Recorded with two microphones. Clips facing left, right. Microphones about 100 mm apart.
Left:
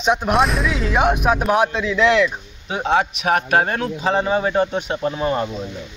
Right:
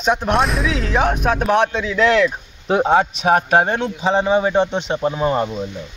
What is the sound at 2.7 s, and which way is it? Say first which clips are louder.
A man's voice: right 4 dB; 35° right (ahead or behind).